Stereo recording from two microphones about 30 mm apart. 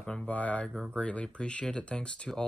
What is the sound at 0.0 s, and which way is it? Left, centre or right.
Speech, left.